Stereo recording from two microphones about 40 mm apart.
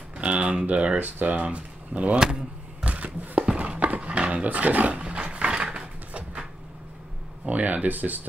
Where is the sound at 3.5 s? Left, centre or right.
Right.